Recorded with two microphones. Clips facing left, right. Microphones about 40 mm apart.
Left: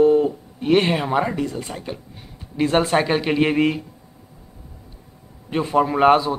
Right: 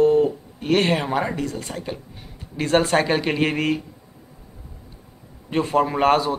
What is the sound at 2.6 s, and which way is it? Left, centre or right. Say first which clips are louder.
Speech: left 1 dB; centre.